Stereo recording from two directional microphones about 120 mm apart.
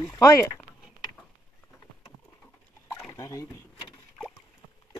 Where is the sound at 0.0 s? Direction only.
40° left (ahead or behind).